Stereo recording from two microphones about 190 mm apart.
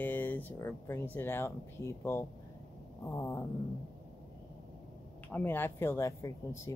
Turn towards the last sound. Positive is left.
turn(degrees=15)  # may be behind; listen again after turning